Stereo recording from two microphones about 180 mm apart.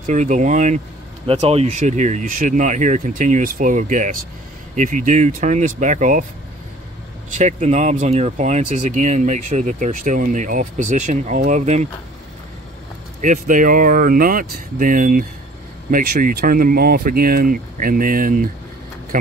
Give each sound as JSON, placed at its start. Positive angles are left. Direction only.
{"t": 0.0, "sound": "speech", "side_deg": -45}
{"t": 7.2, "sound": "speech", "side_deg": -40}
{"t": 13.2, "sound": "speech", "side_deg": -45}